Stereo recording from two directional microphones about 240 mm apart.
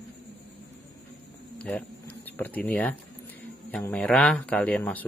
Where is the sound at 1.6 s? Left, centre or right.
Centre.